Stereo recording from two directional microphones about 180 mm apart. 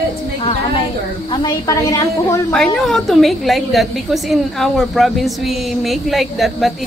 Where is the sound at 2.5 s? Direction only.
Centre (ahead or behind).